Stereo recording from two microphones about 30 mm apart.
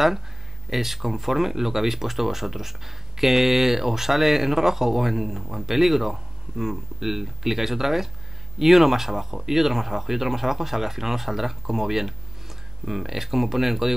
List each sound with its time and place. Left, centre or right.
0.7 s speech: centre